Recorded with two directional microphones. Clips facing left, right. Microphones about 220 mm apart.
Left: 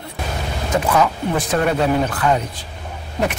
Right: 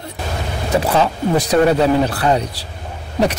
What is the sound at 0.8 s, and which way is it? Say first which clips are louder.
Speech: left 1 dB; 35° right (ahead or behind).